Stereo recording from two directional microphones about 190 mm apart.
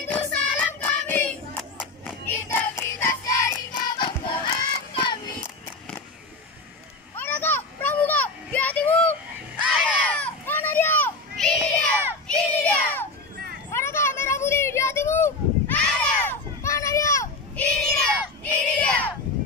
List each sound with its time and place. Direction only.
0.1 s child singing: 10° left (ahead or behind)
2.4 s music: 15° left (ahead or behind)
7.2 s children playing: 10° left (ahead or behind)
9.7 s a sound: 5° left (ahead or behind)
17.8 s child singing: 5° left (ahead or behind)